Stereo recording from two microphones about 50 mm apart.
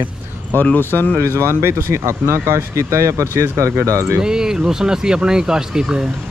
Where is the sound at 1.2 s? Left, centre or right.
Right.